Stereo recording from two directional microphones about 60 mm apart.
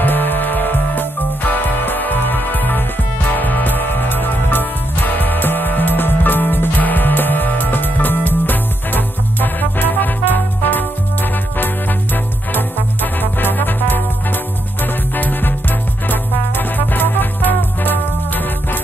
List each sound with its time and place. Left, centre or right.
0.0 s music: left
12.5 s music: left